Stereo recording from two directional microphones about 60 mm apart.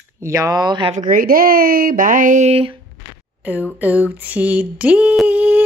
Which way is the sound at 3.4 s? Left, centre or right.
Right.